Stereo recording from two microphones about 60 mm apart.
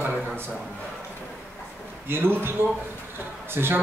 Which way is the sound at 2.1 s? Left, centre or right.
Right.